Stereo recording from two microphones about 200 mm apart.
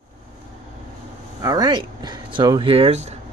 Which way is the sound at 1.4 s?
20° right (ahead or behind).